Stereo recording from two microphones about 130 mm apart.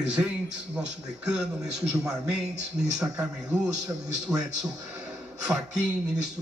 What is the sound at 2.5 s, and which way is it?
Speech, 60° right (ahead or behind).